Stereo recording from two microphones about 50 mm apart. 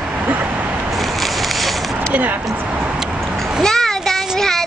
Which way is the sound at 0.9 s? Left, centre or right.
Centre.